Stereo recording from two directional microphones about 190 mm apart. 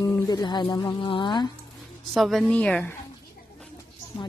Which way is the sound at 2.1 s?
Centre (ahead or behind).